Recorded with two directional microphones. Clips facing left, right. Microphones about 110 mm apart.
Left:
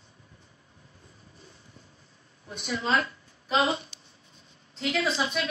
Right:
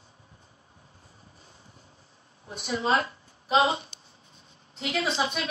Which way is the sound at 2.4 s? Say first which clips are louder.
Right 3 dB; 30° right (ahead or behind).